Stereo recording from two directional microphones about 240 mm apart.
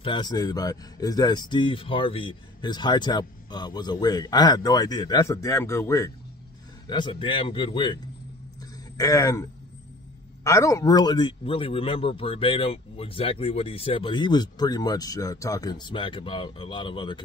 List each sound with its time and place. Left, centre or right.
0.0 s speech: centre
8.5 s a sound: centre
10.4 s speech: centre